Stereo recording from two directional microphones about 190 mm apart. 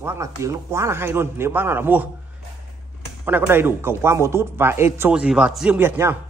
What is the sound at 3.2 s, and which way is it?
Speech, 10° right (ahead or behind).